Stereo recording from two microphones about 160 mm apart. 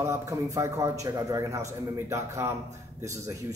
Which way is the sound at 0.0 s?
20° right (ahead or behind).